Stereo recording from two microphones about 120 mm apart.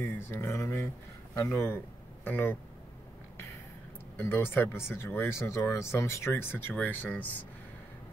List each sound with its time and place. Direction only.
0.0 s speech: 20° left (ahead or behind)
4.2 s speech: 20° left (ahead or behind)